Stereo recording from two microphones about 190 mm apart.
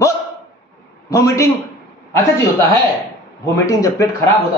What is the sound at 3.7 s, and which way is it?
Speech, 15° left (ahead or behind).